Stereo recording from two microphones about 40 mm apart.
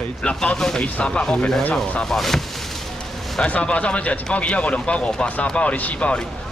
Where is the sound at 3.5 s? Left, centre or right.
Left.